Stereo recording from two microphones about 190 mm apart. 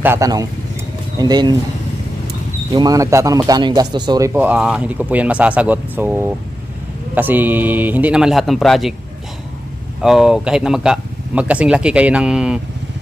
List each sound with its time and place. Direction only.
0.0 s speech: 15° right (ahead or behind)
2.7 s speech: 20° right (ahead or behind)
4.3 s speech: 10° right (ahead or behind)
10.0 s speech: centre (ahead or behind)